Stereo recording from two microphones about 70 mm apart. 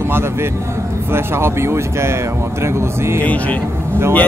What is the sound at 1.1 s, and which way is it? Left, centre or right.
Speech, right.